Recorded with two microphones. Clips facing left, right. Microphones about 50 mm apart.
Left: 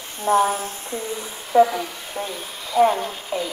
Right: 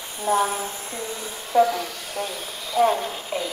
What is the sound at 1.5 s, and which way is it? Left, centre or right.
Speech, centre.